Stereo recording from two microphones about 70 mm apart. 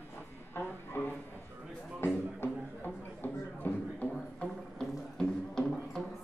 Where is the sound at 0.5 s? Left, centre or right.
Left.